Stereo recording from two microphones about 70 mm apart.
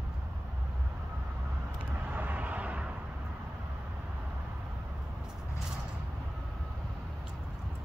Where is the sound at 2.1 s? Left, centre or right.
Right.